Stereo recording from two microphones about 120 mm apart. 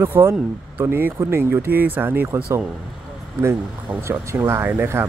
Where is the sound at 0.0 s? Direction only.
20° right (ahead or behind).